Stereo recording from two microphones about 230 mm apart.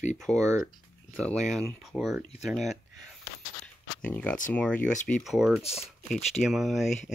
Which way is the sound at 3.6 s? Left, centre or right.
Centre.